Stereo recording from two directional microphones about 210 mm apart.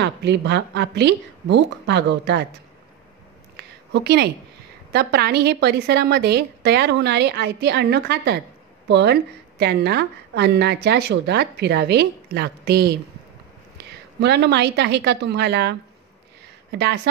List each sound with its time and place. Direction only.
0.0 s speech: 55° right (ahead or behind)
3.5 s a sound: 55° right (ahead or behind)
4.9 s a woman's voice: 50° right (ahead or behind)
16.7 s a woman's voice: 50° right (ahead or behind)